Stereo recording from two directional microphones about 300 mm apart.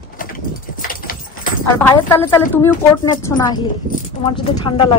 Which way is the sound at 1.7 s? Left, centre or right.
Centre.